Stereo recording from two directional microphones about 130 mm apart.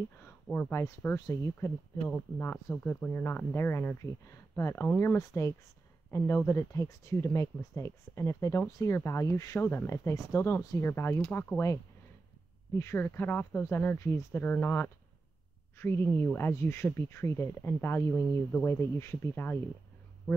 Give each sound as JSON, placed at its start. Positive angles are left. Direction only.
{"t": 0.2, "sound": "speech", "side_deg": 15}
{"t": 5.1, "sound": "speech", "side_deg": 25}